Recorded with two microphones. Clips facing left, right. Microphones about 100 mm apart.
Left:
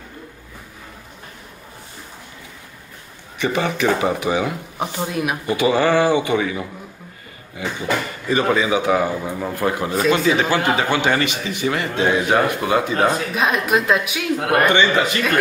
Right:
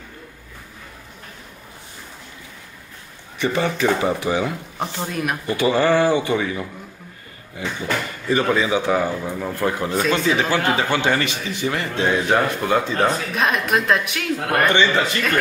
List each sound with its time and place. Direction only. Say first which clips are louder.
3.3 s speech: even; 15° left (ahead or behind)
5.6 s speech: left 1 dB; 15° left (ahead or behind)
7.9 s speech: left 1 dB; 15° left (ahead or behind)
9.9 s a woman's voice: left 4 dB; 5° left (ahead or behind)
10.3 s speech: left 1 dB; 15° left (ahead or behind)
13.3 s a woman's voice: left 1 dB; centre (ahead or behind)
14.7 s speech: left 1 dB; 15° left (ahead or behind)